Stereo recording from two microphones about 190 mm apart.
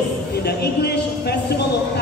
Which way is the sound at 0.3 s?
55° left (ahead or behind).